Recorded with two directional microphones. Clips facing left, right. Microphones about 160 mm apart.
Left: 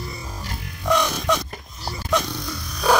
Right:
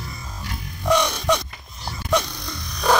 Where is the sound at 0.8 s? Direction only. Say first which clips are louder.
Right 1 dB; centre (ahead or behind).